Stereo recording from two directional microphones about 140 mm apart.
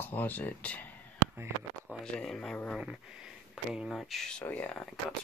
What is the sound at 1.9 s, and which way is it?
Speech, 5° left (ahead or behind).